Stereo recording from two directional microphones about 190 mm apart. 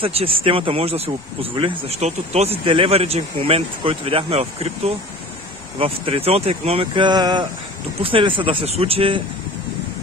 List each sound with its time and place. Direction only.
0.0 s speech: 30° right (ahead or behind)